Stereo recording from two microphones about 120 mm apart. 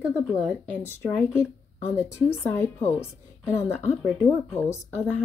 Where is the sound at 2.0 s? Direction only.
20° left (ahead or behind).